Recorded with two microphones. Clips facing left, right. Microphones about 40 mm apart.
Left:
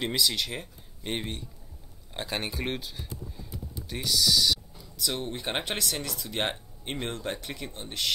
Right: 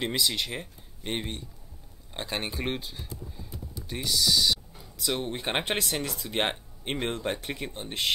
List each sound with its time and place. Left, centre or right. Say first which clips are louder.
0.0 s speech: even; centre
4.7 s a sound: right 1 dB; right
5.1 s speech: right 3 dB; centre
7.6 s speech: right 1 dB; centre